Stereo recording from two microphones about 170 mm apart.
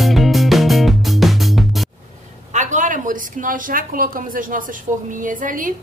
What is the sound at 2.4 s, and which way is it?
A woman's voice, 45° right (ahead or behind).